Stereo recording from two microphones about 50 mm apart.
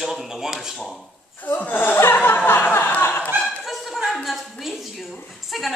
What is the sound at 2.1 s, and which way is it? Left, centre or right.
Chuckle, left.